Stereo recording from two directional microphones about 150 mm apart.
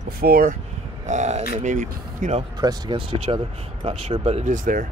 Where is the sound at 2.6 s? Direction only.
35° right (ahead or behind).